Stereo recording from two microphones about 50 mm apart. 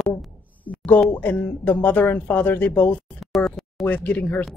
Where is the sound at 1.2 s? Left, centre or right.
Left.